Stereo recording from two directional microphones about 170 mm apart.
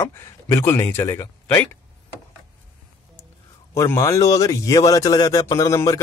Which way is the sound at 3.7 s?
15° left (ahead or behind).